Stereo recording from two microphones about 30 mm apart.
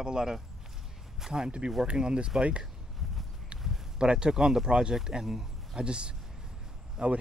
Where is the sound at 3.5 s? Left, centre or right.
Right.